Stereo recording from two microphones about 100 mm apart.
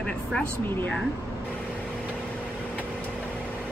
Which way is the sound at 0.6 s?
20° left (ahead or behind).